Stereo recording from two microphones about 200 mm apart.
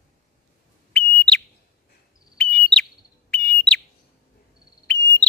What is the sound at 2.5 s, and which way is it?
Bird, 5° left (ahead or behind).